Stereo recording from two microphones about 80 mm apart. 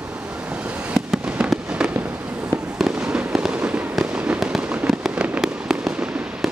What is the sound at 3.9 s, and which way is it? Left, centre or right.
Fireworks, centre.